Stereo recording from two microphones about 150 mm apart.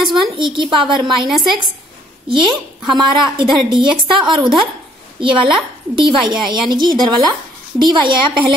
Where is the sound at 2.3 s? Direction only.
30° right (ahead or behind).